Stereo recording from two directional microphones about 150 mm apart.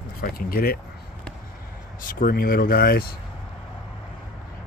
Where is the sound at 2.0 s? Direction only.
70° left (ahead or behind); by 3.0 s 90° left.